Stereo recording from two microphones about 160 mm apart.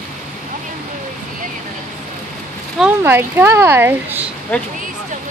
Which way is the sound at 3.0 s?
15° right (ahead or behind).